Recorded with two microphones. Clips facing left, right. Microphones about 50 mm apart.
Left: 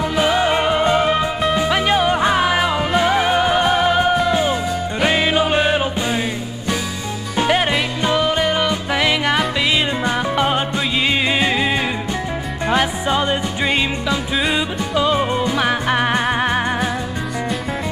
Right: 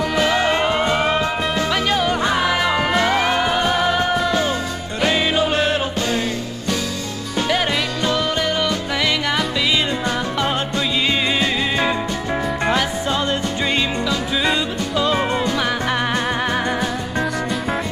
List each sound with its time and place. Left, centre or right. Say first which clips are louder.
0.0 s music: left 1 dB; centre
1.7 s music: left 2 dB; centre
7.3 s music: left 3 dB; left
15.1 s music: left 1 dB; centre
15.4 s music: left 2 dB; centre